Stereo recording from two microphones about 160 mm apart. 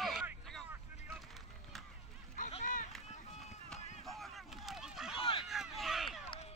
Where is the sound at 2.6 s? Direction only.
55° left (ahead or behind).